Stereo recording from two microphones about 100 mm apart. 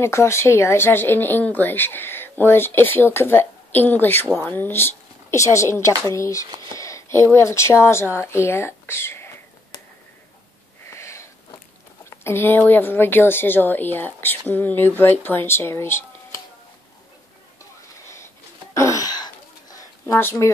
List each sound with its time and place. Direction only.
0.0 s speech: 25° left (ahead or behind)
10.9 s sniff: 30° left (ahead or behind)
12.2 s speech: 25° left (ahead or behind)
18.1 s a sound: 30° left (ahead or behind)
20.1 s speech: 25° left (ahead or behind)